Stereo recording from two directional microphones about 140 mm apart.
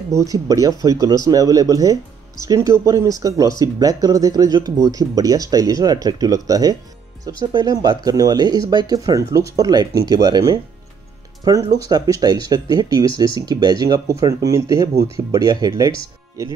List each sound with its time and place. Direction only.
0.1 s speech: 25° right (ahead or behind)
11.7 s speech: 25° right (ahead or behind)